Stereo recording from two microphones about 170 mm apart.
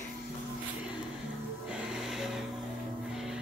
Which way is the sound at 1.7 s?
Centre (ahead or behind).